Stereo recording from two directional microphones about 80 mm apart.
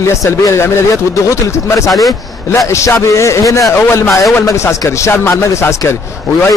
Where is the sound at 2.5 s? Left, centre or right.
Left.